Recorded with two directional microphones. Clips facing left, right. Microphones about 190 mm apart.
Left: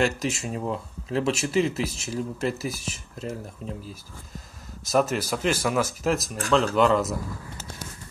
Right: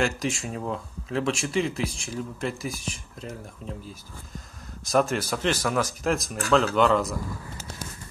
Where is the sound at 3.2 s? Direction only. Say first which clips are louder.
Left 4 dB; 40° left (ahead or behind).